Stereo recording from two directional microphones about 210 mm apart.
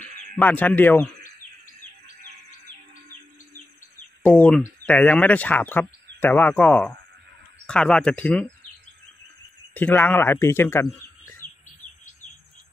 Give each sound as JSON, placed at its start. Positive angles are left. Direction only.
{"t": 0.0, "sound": "a sound", "side_deg": -40}
{"t": 0.4, "sound": "speech", "side_deg": 10}
{"t": 4.2, "sound": "speech", "side_deg": 5}
{"t": 9.8, "sound": "speech", "side_deg": 10}